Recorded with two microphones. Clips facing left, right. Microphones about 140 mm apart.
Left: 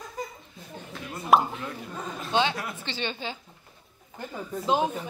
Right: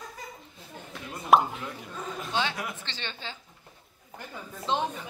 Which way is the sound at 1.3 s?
Centre (ahead or behind).